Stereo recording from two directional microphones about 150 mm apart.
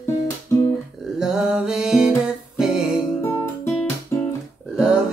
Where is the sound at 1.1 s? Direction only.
5° right (ahead or behind).